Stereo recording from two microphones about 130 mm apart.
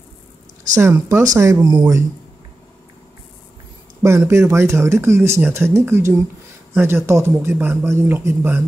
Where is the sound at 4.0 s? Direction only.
20° right (ahead or behind).